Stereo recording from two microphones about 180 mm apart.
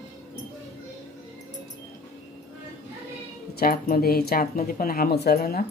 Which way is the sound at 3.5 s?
55° left (ahead or behind).